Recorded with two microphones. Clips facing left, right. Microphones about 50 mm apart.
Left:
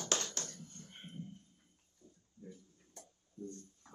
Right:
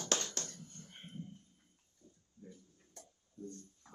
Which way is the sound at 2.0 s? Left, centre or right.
Left.